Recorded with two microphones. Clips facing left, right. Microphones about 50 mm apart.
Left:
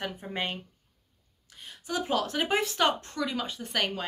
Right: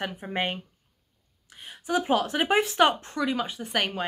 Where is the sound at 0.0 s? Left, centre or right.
Right.